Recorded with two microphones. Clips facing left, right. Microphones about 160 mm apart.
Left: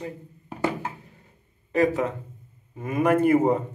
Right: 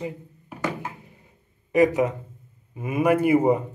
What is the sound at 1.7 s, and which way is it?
Speech, 15° right (ahead or behind).